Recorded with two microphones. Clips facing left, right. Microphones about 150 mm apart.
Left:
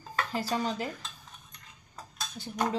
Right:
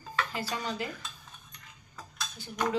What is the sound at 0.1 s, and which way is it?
Speech, 40° left (ahead or behind).